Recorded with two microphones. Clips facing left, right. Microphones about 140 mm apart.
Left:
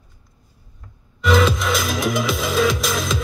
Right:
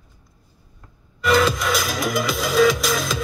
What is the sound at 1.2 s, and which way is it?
Music, centre (ahead or behind).